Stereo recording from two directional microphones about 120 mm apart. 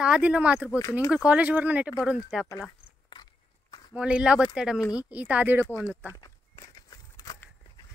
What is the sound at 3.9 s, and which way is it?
Speech, 10° right (ahead or behind).